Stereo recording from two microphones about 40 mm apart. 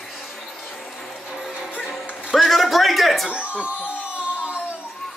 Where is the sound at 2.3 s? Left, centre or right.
Centre.